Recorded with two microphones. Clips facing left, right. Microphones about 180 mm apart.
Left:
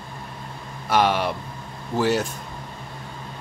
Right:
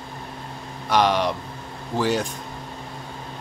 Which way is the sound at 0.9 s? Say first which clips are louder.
Right 1 dB; 5° left (ahead or behind).